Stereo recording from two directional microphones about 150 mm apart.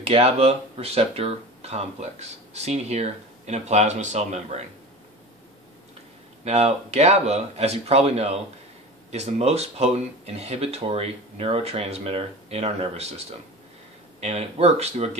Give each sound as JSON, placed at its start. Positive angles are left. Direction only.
{"t": 0.0, "sound": "speech", "side_deg": -40}
{"t": 6.4, "sound": "speech", "side_deg": -45}
{"t": 14.2, "sound": "speech", "side_deg": -45}